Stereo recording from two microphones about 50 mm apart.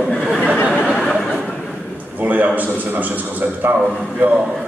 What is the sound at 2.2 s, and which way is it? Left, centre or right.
A man's voice, right.